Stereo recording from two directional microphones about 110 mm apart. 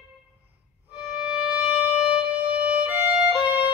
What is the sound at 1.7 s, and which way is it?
Wind instrument, 15° right (ahead or behind).